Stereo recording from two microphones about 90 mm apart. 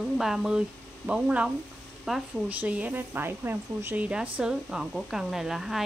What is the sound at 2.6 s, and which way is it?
Speech, 15° right (ahead or behind).